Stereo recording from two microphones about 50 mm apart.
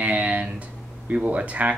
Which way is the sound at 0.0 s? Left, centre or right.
Right.